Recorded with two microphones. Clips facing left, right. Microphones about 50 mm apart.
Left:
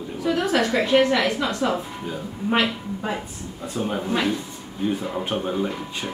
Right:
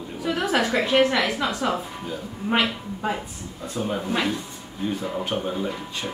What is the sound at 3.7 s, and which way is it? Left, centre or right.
Speech, centre.